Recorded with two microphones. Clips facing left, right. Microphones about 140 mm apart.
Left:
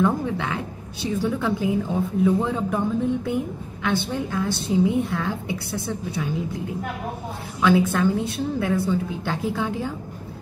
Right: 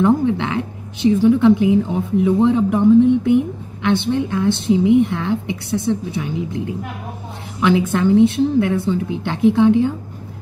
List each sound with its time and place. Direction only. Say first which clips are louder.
0.0 s a woman's voice: right 7 dB; 20° right (ahead or behind)
7.6 s a woman's voice: right 3 dB; 20° right (ahead or behind)